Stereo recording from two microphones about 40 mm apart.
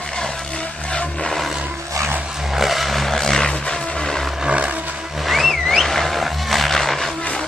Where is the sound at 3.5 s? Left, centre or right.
Centre.